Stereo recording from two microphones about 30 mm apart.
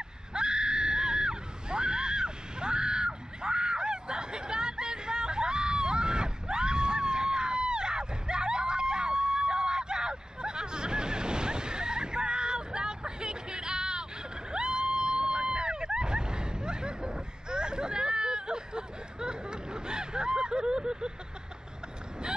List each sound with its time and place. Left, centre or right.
0.3 s screaming: right
14.5 s vehicle: right